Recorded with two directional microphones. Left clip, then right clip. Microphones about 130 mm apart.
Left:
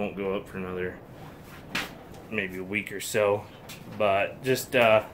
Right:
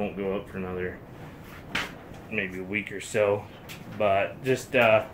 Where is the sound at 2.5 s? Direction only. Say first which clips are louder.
Even; 15° left (ahead or behind).